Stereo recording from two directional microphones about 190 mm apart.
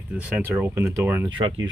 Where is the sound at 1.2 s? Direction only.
25° right (ahead or behind).